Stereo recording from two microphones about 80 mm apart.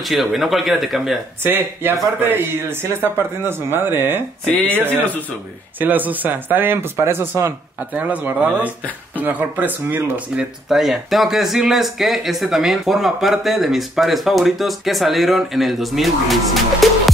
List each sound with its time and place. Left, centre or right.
0.0 s speech: centre
1.4 s speech: right
7.9 s speech: centre
10.3 s speech: centre